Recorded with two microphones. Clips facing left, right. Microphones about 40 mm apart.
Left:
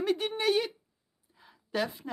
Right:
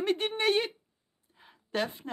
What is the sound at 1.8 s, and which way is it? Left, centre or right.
Speech, right.